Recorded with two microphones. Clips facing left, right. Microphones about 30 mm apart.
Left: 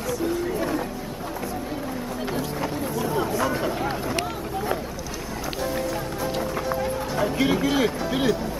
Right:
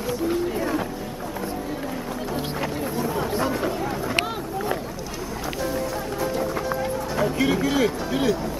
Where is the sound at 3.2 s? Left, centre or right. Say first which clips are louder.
Even; right.